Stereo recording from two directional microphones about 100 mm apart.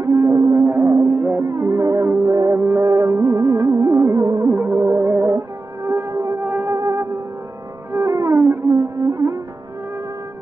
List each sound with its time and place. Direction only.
0.0 s music: 30° right (ahead or behind)
0.7 s music: 25° right (ahead or behind)
4.5 s music: 20° right (ahead or behind)
6.4 s music: 20° right (ahead or behind)
6.7 s music: 30° right (ahead or behind)